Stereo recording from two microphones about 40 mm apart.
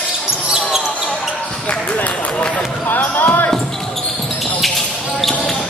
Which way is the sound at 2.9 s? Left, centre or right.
Left.